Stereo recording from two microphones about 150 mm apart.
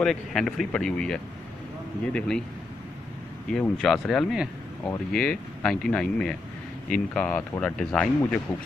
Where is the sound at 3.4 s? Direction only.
5° left (ahead or behind).